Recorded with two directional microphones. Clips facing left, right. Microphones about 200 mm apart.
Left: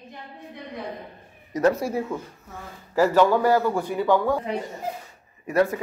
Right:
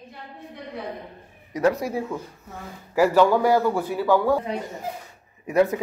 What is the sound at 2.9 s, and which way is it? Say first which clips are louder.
Speech: right 1 dB; 10° right (ahead or behind).